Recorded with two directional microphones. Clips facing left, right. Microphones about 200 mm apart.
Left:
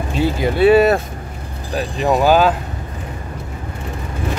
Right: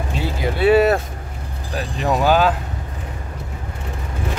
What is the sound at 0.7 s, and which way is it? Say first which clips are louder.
Speech: left 2 dB; 25° left (ahead or behind).